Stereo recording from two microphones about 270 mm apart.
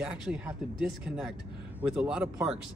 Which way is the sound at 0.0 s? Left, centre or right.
Centre.